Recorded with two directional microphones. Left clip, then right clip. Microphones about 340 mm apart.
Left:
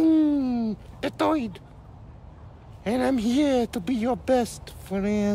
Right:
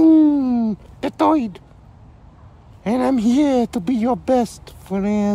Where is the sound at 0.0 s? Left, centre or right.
Centre.